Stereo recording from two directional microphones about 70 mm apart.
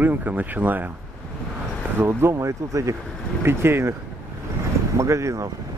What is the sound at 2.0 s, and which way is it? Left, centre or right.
Speech, right.